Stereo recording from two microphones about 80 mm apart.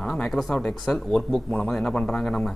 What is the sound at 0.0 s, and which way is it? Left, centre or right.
Speech, centre.